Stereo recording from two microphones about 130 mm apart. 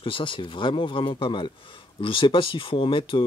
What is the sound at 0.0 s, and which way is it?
A man's voice, 40° left (ahead or behind).